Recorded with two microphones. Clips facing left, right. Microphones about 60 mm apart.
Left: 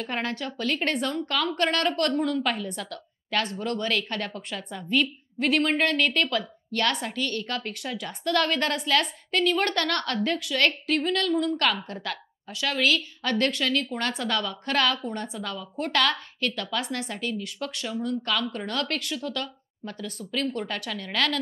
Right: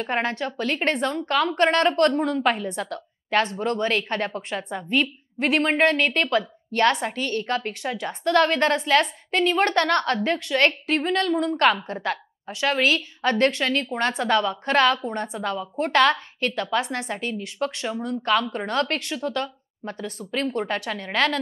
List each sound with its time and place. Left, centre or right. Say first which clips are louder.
0.0 s a woman's voice: right 5 dB; right